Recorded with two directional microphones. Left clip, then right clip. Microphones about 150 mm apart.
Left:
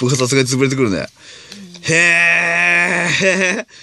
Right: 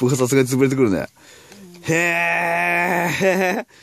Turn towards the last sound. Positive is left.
turn(degrees=-15)  # may be behind; listen again after turning